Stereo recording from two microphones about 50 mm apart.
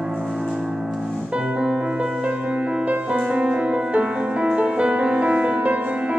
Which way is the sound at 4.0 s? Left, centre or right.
Centre.